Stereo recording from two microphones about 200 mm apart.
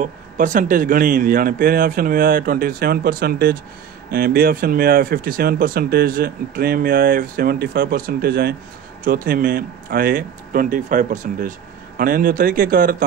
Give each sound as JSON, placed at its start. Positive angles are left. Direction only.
{"t": 0.0, "sound": "speech", "side_deg": -40}